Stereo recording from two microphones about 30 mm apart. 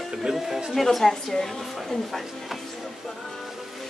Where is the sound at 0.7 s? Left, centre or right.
Centre.